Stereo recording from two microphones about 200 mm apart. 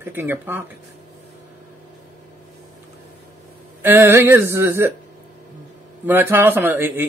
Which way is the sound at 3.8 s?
10° right (ahead or behind).